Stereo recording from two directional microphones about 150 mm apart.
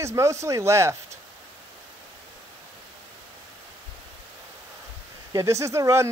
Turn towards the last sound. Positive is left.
turn(degrees=-20)  # may be behind; listen again after turning